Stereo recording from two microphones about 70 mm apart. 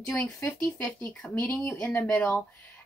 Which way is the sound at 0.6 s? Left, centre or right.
Left.